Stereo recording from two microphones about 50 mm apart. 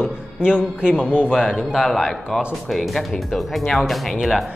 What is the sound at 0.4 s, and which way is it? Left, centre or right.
A man's voice, centre.